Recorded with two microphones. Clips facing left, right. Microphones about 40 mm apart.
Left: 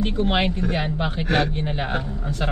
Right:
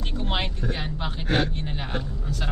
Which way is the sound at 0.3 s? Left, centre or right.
Left.